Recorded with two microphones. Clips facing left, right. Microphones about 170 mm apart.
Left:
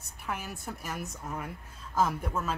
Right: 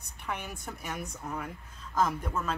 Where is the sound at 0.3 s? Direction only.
Centre (ahead or behind).